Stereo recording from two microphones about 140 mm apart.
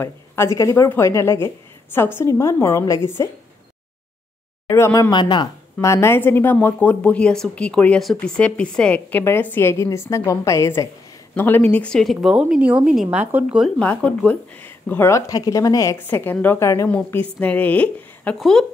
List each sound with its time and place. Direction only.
0.6 s a woman's voice: 20° left (ahead or behind)
4.6 s a woman's voice: 20° left (ahead or behind)
5.1 s speech: 35° left (ahead or behind)
5.8 s a woman's voice: 20° left (ahead or behind); by 13.7 s 10° right (ahead or behind)
13.7 s speech: 10° left (ahead or behind)